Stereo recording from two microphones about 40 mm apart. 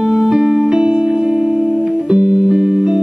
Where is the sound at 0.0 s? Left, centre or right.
Centre.